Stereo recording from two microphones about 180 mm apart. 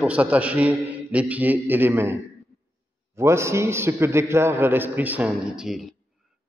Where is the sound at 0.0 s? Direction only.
10° right (ahead or behind).